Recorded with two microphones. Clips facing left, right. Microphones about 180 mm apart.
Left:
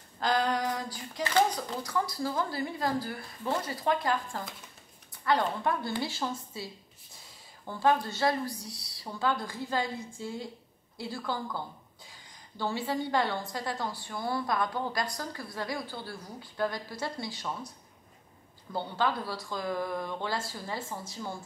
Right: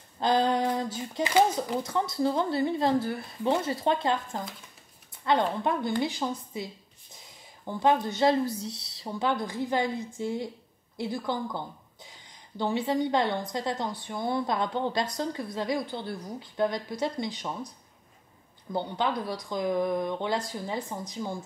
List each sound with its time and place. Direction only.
0.2 s female singing: 25° right (ahead or behind)
1.5 s a woman's voice: 25° right (ahead or behind)